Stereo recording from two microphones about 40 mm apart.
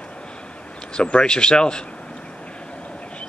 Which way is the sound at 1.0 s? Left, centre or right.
Left.